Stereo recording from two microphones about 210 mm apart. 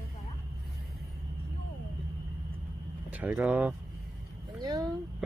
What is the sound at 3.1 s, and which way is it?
Speech, 5° right (ahead or behind).